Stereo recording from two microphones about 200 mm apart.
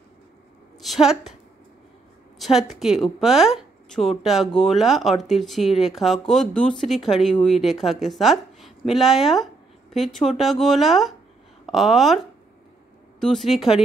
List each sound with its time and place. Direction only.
0.7 s a woman's voice: centre (ahead or behind)
2.3 s speech: centre (ahead or behind)